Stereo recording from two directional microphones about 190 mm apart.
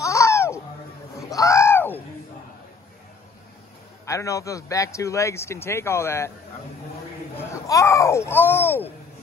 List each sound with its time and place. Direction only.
0.0 s a sound: 15° left (ahead or behind)
4.0 s a man's voice: 15° left (ahead or behind)
7.3 s speech: 15° left (ahead or behind)